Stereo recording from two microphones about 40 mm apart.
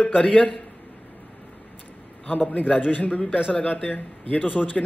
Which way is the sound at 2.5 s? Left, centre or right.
Left.